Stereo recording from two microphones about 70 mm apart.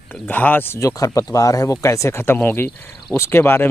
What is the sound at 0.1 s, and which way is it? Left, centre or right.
Speech, left.